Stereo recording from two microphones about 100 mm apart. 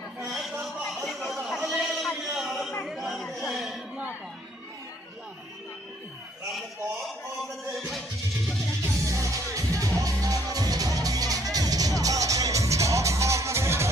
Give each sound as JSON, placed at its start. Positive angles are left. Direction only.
{"t": 0.2, "sound": "a sound", "side_deg": 0}
{"t": 2.8, "sound": "chatter", "side_deg": 0}
{"t": 9.0, "sound": "music", "side_deg": -30}